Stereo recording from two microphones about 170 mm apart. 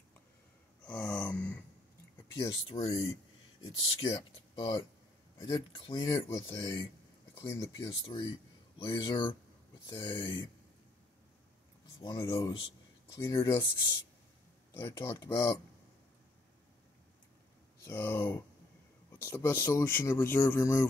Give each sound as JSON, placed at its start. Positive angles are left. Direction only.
{"t": 1.0, "sound": "a sound", "side_deg": 15}
{"t": 2.3, "sound": "speech", "side_deg": 25}
{"t": 12.0, "sound": "speech", "side_deg": 30}
{"t": 13.1, "sound": "speech", "side_deg": 15}
{"t": 17.8, "sound": "speech", "side_deg": 10}